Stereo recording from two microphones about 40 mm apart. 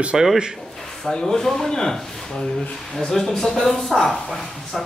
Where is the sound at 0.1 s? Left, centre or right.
Centre.